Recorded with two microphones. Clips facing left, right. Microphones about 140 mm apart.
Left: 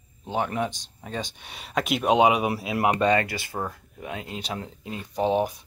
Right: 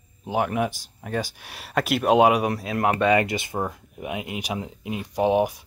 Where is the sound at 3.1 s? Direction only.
20° right (ahead or behind).